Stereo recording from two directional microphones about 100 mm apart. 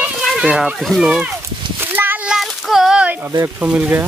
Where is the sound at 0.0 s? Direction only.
10° right (ahead or behind).